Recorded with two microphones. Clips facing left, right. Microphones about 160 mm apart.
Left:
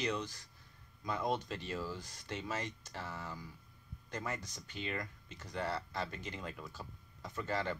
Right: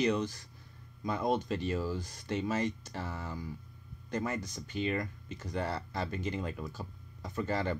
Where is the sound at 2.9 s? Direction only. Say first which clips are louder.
Right 5 dB; 45° right (ahead or behind).